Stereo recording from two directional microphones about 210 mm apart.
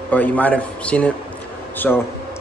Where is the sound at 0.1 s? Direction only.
10° left (ahead or behind).